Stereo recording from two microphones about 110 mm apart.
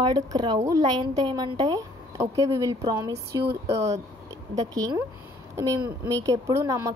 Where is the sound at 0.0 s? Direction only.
40° right (ahead or behind).